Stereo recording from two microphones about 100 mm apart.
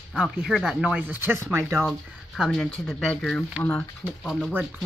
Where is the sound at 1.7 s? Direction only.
5° left (ahead or behind).